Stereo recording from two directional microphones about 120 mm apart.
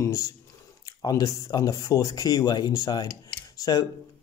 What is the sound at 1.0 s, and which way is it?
Speech, 30° left (ahead or behind).